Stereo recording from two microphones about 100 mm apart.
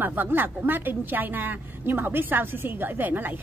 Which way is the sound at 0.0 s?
20° right (ahead or behind).